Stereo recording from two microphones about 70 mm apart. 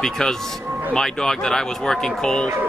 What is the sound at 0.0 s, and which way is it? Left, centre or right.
Speech, centre.